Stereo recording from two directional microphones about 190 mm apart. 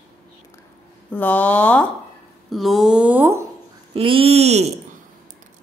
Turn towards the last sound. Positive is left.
turn(degrees=-35)  # may be behind; listen again after turning